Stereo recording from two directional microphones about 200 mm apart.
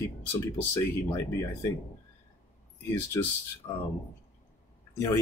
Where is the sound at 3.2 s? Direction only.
15° left (ahead or behind).